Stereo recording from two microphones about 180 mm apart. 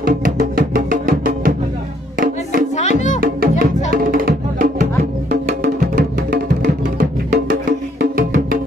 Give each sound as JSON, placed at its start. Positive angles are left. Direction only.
{"t": 0.0, "sound": "music", "side_deg": -55}
{"t": 2.7, "sound": "music", "side_deg": 40}
{"t": 3.2, "sound": "music", "side_deg": -55}